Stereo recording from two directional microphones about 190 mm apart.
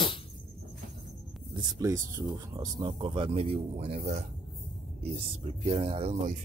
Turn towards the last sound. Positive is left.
turn(degrees=-35)  # may be behind; listen again after turning